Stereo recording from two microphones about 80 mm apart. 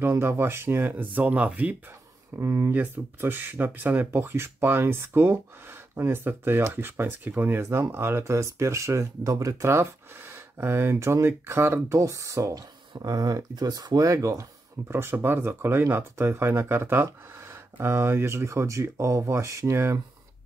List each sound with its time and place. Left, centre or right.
0.0 s speech: right
2.3 s speech: right